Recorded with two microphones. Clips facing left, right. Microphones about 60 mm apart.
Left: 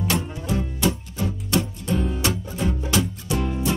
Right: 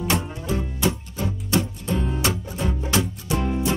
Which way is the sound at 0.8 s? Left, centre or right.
Right.